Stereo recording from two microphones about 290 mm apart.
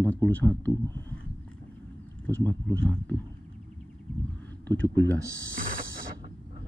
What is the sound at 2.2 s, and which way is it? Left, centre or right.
Speech, centre.